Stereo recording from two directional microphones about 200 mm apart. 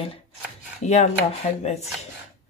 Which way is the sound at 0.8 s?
35° left (ahead or behind).